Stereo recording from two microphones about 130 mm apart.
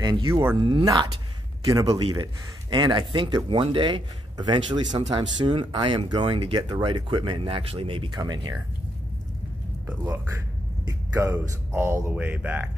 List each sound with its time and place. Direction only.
0.0 s speech: 35° right (ahead or behind)
0.3 s speech: 15° right (ahead or behind)
0.6 s speech: 35° right (ahead or behind)
8.2 s speech: 30° right (ahead or behind)
9.8 s speech: 15° right (ahead or behind)